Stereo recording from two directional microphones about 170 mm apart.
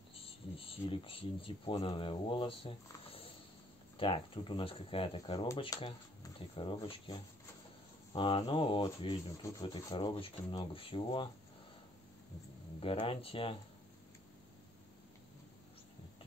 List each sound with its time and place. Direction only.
0.1 s speech: 35° left (ahead or behind)
4.0 s rub: 30° left (ahead or behind)
6.2 s speech: 30° left (ahead or behind)
8.1 s rub: 30° left (ahead or behind)
12.8 s rub: 30° left (ahead or behind)